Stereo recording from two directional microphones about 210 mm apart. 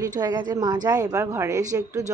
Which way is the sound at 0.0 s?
20° right (ahead or behind).